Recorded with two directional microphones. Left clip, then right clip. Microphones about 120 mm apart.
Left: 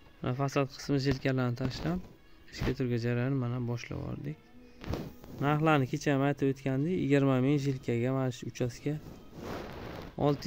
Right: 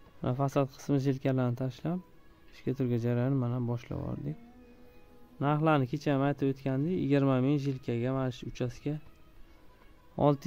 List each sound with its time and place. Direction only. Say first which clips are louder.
0.2 s speech: right 1 dB; 35° right (ahead or behind)
5.4 s speech: even; 10° right (ahead or behind); by 9.0 s 5° left (ahead or behind)
10.1 s speech: right 3 dB; 20° right (ahead or behind)